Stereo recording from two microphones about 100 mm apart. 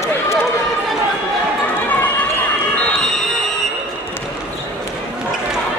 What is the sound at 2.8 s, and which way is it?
Fire alarm, 5° left (ahead or behind).